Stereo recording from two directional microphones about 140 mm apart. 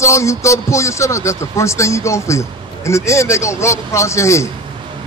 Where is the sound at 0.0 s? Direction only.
20° left (ahead or behind).